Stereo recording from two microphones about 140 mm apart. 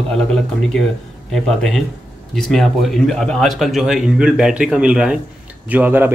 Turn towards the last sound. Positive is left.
turn(degrees=-15)  # may be behind; listen again after turning